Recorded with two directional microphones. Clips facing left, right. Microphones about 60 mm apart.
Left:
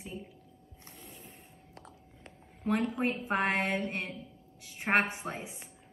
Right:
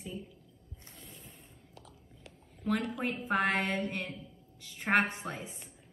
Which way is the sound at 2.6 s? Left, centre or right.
Left.